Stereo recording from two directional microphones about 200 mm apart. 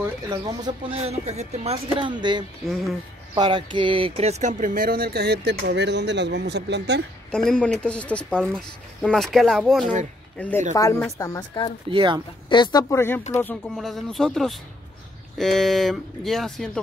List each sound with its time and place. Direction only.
0.0 s speech: 20° right (ahead or behind)
0.9 s speech: 30° right (ahead or behind)
2.6 s speech: centre (ahead or behind)
3.3 s speech: 25° right (ahead or behind); by 7.0 s 60° right (ahead or behind)
7.2 s a woman's voice: 5° left (ahead or behind); by 11.7 s 20° left (ahead or behind)
11.9 s speech: 25° right (ahead or behind)
12.4 s speech: 25° left (ahead or behind); by 16.8 s centre (ahead or behind)